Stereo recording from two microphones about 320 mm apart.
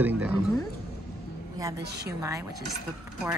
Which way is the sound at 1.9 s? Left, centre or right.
Right.